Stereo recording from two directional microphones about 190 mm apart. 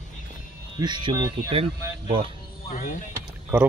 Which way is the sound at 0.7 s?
25° right (ahead or behind).